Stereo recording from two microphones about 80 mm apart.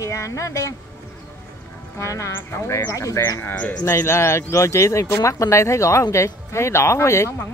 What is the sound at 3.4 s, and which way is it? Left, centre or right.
Speech, left.